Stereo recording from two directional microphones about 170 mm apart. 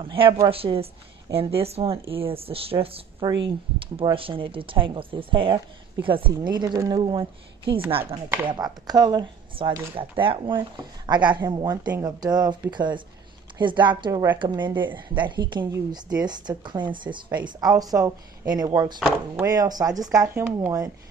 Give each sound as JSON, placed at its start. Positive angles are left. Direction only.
{"t": 0.0, "sound": "speech", "side_deg": -30}
{"t": 18.9, "sound": "speech", "side_deg": -5}
{"t": 19.4, "sound": "speech", "side_deg": -20}